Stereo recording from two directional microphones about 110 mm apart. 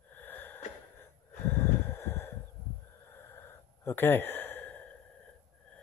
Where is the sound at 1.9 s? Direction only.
20° left (ahead or behind).